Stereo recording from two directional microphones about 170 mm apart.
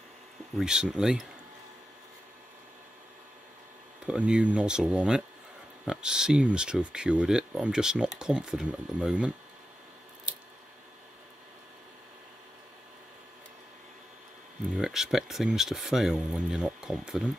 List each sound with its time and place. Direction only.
0.6 s speech: 5° right (ahead or behind)
4.0 s speech: 5° right (ahead or behind)
14.7 s speech: centre (ahead or behind)